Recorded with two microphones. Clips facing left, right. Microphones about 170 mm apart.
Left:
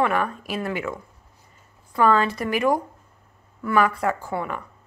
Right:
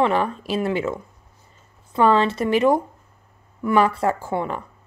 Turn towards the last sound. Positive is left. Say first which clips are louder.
# right 3 dB
turn(degrees=-25)  # may be behind; listen again after turning